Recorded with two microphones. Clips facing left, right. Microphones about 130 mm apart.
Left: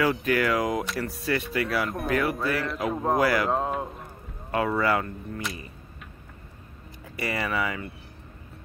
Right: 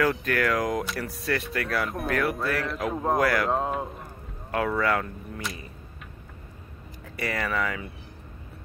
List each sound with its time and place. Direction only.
0.0 s speech: 5° left (ahead or behind)
7.2 s speech: 5° left (ahead or behind)